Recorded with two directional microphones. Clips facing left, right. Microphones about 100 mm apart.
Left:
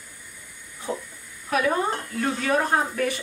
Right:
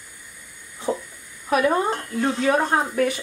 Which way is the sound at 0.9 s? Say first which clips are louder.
Right 5 dB; 20° right (ahead or behind).